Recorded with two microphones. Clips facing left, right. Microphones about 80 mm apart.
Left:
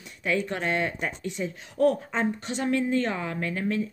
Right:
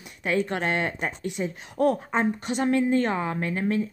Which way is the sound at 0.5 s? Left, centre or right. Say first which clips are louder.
Right 1 dB; right.